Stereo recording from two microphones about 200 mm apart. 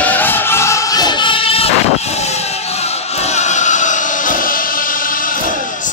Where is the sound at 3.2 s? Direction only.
35° left (ahead or behind).